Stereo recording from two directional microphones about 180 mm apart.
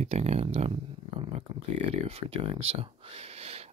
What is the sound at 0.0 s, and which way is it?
Speech, 35° right (ahead or behind).